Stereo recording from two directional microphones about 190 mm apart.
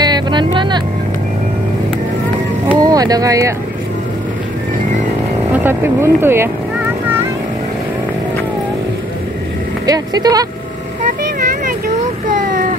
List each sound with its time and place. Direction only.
0.0 s vehicle: 25° right (ahead or behind)
2.8 s speech: 20° right (ahead or behind)
5.5 s speech: 10° right (ahead or behind)
9.8 s speech: 20° right (ahead or behind)
11.0 s vehicle: 40° right (ahead or behind)